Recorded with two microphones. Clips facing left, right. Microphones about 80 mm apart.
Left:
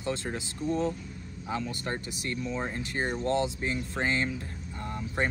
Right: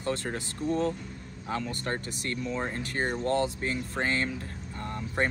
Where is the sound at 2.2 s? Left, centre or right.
Centre.